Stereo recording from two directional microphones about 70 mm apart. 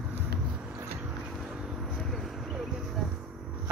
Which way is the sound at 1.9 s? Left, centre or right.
Centre.